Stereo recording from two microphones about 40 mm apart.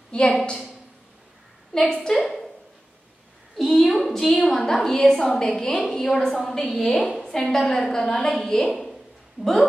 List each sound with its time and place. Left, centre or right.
0.1 s a woman's voice: left
1.7 s a woman's voice: centre
3.5 s a woman's voice: centre
8.1 s a woman's voice: left
8.4 s a woman's voice: centre
8.6 s a woman's voice: centre
9.4 s speech: right